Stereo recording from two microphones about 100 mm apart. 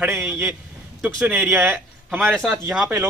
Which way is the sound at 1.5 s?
20° right (ahead or behind).